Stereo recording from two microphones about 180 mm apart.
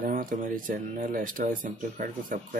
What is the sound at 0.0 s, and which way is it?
Speech, 50° right (ahead or behind).